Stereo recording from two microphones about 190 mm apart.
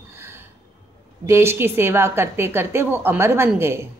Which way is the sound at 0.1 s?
10° right (ahead or behind).